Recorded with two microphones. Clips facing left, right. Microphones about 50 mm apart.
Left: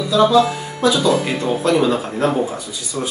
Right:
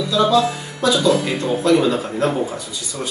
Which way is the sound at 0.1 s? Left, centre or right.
Centre.